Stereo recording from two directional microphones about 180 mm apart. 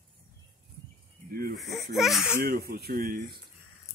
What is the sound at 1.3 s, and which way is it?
Speech, 55° right (ahead or behind).